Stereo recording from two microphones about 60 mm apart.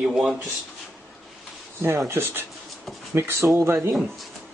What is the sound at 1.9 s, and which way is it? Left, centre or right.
Speech, right.